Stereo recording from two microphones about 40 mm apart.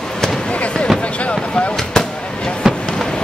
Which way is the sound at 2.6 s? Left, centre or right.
Centre.